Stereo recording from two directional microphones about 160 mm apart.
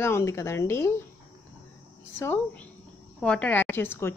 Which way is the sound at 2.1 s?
15° left (ahead or behind).